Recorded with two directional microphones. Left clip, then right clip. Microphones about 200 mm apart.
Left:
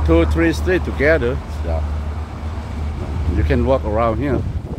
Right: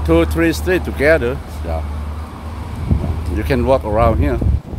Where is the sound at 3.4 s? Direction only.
15° right (ahead or behind).